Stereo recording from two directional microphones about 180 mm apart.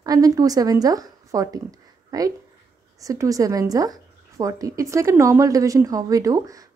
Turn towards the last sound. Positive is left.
turn(degrees=-20)  # may be behind; listen again after turning